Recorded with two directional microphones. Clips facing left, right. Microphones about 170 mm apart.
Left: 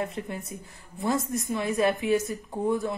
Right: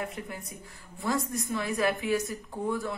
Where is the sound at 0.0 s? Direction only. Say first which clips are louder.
Left 4 dB; 30° left (ahead or behind).